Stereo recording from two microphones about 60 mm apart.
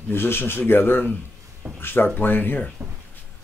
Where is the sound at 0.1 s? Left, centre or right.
Left.